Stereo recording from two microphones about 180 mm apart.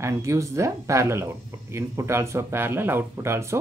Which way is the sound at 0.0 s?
15° right (ahead or behind).